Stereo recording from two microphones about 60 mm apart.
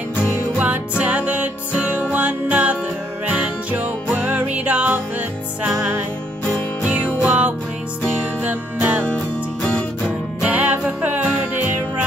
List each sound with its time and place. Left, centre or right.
0.2 s music: right
7.2 s music: right
9.0 s music: left
10.4 s music: right